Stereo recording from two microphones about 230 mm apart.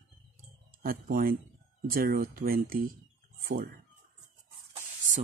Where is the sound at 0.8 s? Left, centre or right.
Right.